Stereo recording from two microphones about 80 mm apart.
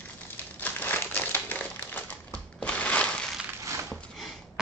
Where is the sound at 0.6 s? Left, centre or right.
Left.